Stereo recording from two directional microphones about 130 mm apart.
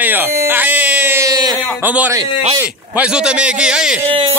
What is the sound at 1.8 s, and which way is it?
Speech, 15° right (ahead or behind).